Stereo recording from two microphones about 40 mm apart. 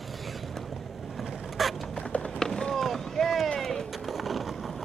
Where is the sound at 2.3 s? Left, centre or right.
Centre.